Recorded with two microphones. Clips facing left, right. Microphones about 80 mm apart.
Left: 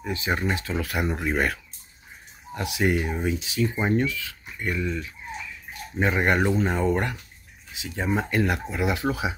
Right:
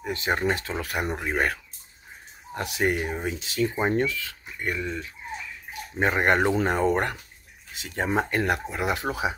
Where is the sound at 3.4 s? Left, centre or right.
Right.